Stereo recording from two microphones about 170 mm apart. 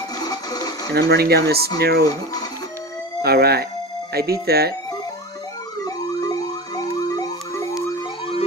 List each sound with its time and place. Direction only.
0.2 s television: 25° left (ahead or behind)
0.9 s speech: 70° right (ahead or behind)
3.2 s speech: 70° right (ahead or behind)
5.9 s siren: 20° left (ahead or behind)